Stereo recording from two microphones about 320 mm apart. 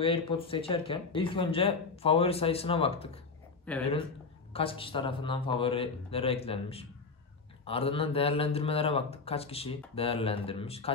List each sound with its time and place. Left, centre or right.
0.0 s speech: centre
3.7 s speech: centre
4.6 s speech: centre